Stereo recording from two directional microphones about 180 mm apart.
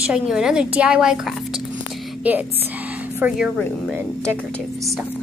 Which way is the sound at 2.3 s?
10° right (ahead or behind).